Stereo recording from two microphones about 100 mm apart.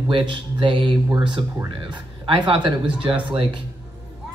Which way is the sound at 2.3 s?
55° right (ahead or behind).